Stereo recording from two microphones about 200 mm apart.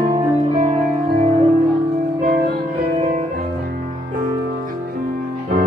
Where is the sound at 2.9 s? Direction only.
35° right (ahead or behind).